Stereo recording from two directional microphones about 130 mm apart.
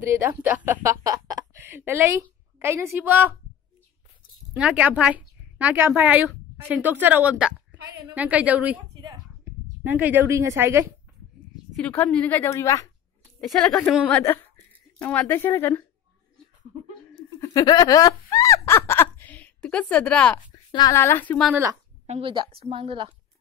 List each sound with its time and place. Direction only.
0.1 s speech: 20° right (ahead or behind)
0.7 s a sound: 25° right (ahead or behind)
1.6 s a woman's voice: 20° right (ahead or behind)
4.6 s a woman's voice: 10° right (ahead or behind)
12.1 s speech: 10° left (ahead or behind)
13.4 s speech: centre (ahead or behind)
14.1 s speech: 20° left (ahead or behind)
17.4 s a sound: 30° left (ahead or behind); by 20.3 s 5° left (ahead or behind)
20.9 s speech: 15° left (ahead or behind)
22.2 s speech: 40° right (ahead or behind)